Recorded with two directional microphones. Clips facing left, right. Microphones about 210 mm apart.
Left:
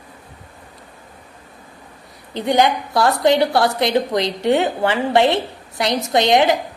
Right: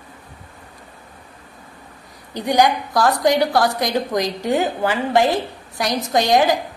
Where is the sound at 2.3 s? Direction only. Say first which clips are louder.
Even; 25° left (ahead or behind).